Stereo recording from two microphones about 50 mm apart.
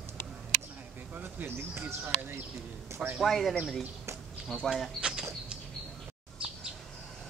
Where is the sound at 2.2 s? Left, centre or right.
Right.